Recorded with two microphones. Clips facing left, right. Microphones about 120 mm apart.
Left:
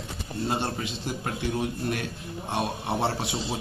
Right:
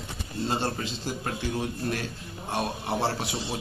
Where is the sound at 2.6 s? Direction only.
25° left (ahead or behind).